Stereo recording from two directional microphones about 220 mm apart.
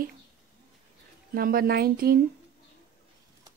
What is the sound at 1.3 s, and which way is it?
Speech, 40° right (ahead or behind).